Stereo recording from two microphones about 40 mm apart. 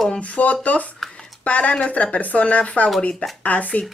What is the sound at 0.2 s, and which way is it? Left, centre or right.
Speech, left.